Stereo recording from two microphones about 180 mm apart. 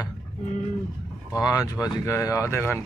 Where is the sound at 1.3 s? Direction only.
20° left (ahead or behind).